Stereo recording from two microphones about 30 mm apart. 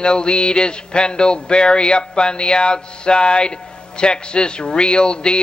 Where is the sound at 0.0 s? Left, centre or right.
Left.